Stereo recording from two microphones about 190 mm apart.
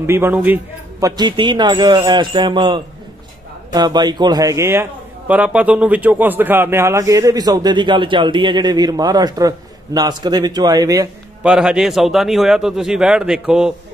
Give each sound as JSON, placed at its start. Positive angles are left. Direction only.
{"t": 0.0, "sound": "a man's voice", "side_deg": -10}
{"t": 1.0, "sound": "a man's voice", "side_deg": -20}
{"t": 11.4, "sound": "speech", "side_deg": -5}